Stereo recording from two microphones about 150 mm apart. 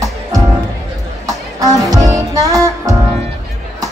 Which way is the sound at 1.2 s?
25° right (ahead or behind).